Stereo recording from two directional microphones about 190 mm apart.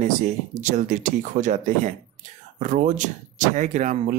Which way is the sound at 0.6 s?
40° right (ahead or behind).